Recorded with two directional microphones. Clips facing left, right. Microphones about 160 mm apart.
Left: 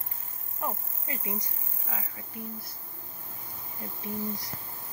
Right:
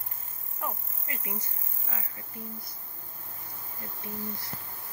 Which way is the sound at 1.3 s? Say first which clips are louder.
Left 3 dB; 15° left (ahead or behind).